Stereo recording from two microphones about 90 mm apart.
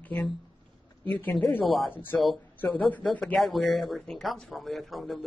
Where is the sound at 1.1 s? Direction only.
20° left (ahead or behind).